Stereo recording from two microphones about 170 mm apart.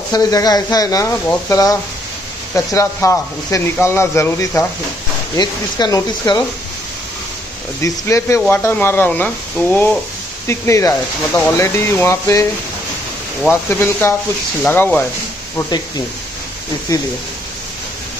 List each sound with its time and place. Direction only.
0.1 s speech: 20° left (ahead or behind)
7.8 s speech: 15° left (ahead or behind)
13.5 s speech: 10° left (ahead or behind)
16.9 s speech: 20° left (ahead or behind)